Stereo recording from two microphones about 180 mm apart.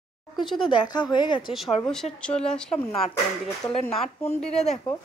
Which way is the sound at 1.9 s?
5° left (ahead or behind).